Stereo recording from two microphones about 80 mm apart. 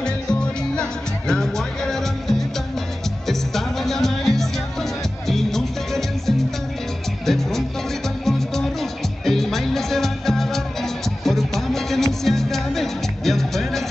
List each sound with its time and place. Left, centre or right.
0.0 s music: centre